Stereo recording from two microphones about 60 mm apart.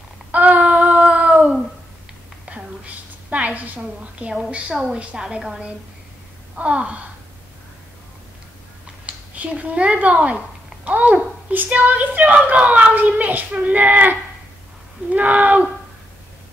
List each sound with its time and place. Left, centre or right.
0.3 s child singing: right
1.1 s a sound: right
4.7 s a woman's voice: centre
6.5 s a child's voice: centre
9.0 s a child's voice: right
15.1 s a child's voice: right